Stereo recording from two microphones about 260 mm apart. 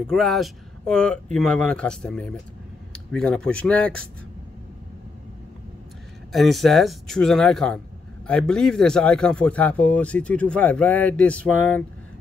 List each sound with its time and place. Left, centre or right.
0.0 s speech: centre
6.3 s speech: centre